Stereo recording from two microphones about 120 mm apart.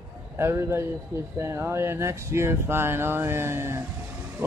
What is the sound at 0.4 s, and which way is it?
Speech, 20° right (ahead or behind).